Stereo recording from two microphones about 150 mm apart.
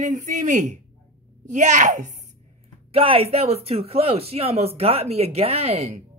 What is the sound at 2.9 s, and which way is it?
Speech, 40° right (ahead or behind).